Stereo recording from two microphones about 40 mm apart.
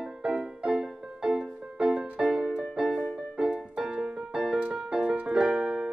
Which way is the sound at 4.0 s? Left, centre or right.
Centre.